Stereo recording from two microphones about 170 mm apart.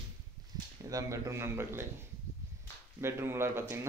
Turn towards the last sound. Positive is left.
turn(degrees=-15)  # may be behind; listen again after turning